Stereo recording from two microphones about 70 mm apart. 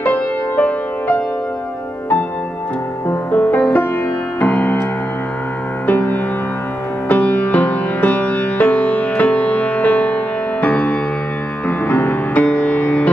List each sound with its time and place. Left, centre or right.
0.0 s music: left
3.1 s music: left
5.9 s music: left